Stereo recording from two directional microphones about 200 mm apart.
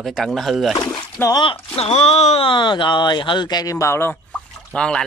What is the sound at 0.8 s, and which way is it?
Speech, 15° left (ahead or behind).